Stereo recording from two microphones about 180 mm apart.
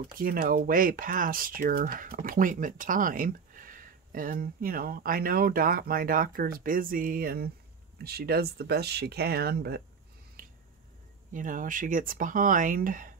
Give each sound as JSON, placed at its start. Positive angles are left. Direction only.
{"t": 0.2, "sound": "speech", "side_deg": -55}
{"t": 10.4, "sound": "finger snapping", "side_deg": -50}
{"t": 11.3, "sound": "speech", "side_deg": -50}